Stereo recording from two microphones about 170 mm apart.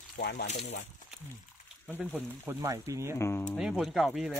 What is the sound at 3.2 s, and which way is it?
Speech, 10° left (ahead or behind).